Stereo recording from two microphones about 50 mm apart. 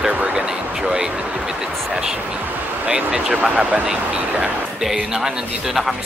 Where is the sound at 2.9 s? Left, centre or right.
Right.